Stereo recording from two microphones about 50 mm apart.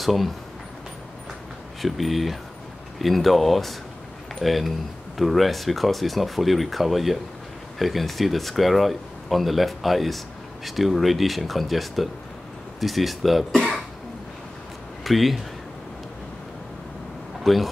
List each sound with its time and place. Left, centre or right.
0.0 s speech: centre
1.8 s speech: centre
15.0 s speech: centre
17.4 s a sound: centre